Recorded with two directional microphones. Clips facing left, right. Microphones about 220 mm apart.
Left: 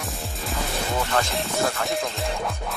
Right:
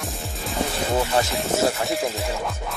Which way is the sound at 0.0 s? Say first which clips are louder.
Right 1 dB; centre (ahead or behind).